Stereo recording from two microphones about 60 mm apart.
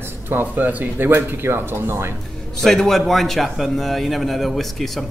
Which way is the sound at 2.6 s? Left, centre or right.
Centre.